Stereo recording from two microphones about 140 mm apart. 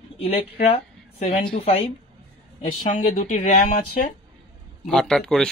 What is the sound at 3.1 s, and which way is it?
Speech, 50° left (ahead or behind).